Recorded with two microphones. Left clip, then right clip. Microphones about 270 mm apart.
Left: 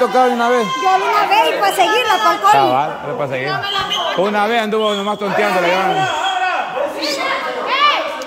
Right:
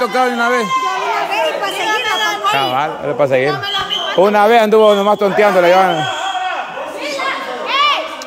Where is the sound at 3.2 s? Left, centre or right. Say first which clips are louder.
Right 7 dB; right.